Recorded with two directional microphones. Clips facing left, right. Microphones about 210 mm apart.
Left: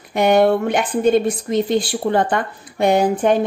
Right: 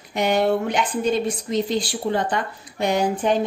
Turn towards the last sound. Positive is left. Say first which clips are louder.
# left 5 dB
turn(degrees=55)  # may be behind; listen again after turning